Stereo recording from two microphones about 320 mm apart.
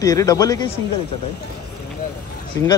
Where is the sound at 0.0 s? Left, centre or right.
Centre.